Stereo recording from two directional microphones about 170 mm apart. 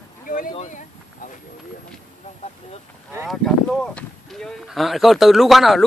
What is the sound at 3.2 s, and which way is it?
Speech, centre (ahead or behind).